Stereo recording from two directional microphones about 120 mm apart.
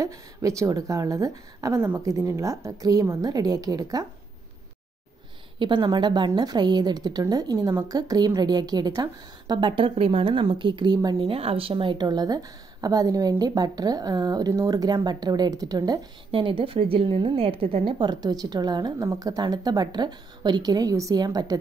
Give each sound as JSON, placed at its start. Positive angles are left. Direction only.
{"t": 0.0, "sound": "a woman's voice", "side_deg": -25}
{"t": 5.6, "sound": "a woman's voice", "side_deg": -40}
{"t": 11.2, "sound": "a woman's voice", "side_deg": -50}
{"t": 16.3, "sound": "a woman's voice", "side_deg": -45}